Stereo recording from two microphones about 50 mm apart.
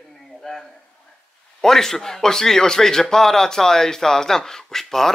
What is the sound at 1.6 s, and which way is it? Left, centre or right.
A man's voice, centre.